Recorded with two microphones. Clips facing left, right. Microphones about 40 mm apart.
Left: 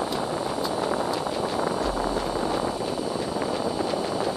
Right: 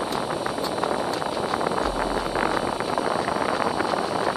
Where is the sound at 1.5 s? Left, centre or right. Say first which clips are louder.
Right 2 dB; right.